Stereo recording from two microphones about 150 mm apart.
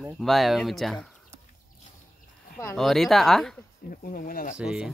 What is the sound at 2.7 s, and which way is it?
Speech, centre (ahead or behind).